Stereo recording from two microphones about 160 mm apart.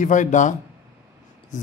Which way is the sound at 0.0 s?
50° left (ahead or behind).